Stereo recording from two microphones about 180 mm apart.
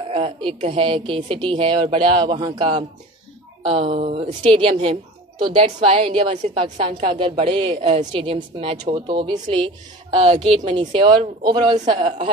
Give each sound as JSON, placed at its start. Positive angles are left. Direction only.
{"t": 0.1, "sound": "a woman's voice", "side_deg": -30}